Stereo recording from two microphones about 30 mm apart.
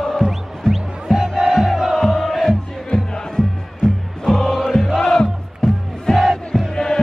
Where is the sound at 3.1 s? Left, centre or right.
Left.